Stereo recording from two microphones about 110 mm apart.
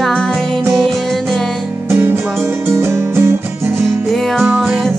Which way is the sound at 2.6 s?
20° right (ahead or behind).